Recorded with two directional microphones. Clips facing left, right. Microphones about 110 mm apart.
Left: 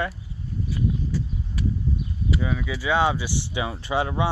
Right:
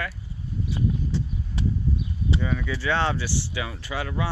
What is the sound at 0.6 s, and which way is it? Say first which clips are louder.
Horse: even; 25° right (ahead or behind).